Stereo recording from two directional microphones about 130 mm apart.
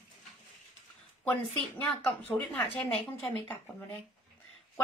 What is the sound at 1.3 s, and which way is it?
A woman's voice, 15° left (ahead or behind).